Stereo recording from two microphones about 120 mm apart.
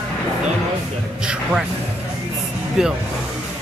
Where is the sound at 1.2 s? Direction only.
5° right (ahead or behind).